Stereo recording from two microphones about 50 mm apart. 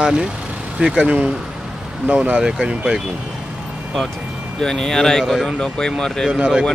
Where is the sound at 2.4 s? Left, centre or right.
Centre.